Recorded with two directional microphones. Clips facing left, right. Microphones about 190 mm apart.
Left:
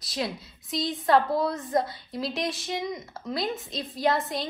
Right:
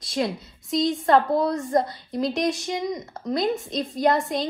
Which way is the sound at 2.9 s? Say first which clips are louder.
Right 5 dB; 20° right (ahead or behind).